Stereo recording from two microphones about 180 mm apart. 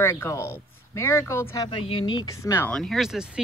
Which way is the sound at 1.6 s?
30° left (ahead or behind).